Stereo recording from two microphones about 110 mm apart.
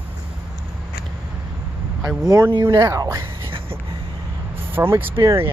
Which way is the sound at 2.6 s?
30° right (ahead or behind).